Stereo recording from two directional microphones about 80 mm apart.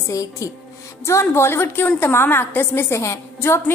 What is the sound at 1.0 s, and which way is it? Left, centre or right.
A woman's voice, left.